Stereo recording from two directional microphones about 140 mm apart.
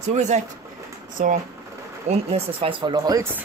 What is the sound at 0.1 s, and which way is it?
Speech, 60° right (ahead or behind).